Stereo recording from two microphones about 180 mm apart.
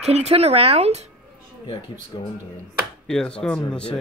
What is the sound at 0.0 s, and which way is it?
Speech, 35° right (ahead or behind).